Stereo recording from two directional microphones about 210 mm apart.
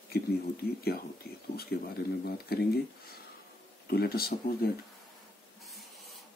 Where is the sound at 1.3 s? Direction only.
50° left (ahead or behind).